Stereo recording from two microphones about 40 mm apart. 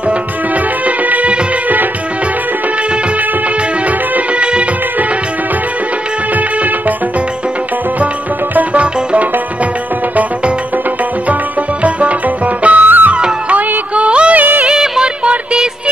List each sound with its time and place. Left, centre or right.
0.8 s music of bollywood: right
4.4 s music of bollywood: right
8.7 s music: right
11.8 s music: right
14.0 s music: right
14.3 s music of bollywood: right
14.7 s music: centre